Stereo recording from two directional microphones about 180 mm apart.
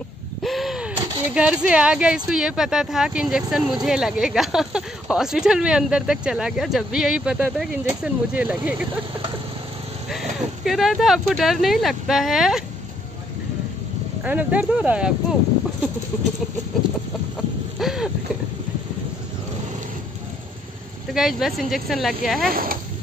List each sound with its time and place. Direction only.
0.4 s gasp: centre (ahead or behind)
0.9 s a sound: 30° right (ahead or behind)
1.3 s speech: 5° right (ahead or behind)
10.0 s speech: centre (ahead or behind)
14.2 s speech: 10° right (ahead or behind)
17.7 s boat: centre (ahead or behind)
21.1 s speech: centre (ahead or behind)
22.5 s speech: 55° right (ahead or behind)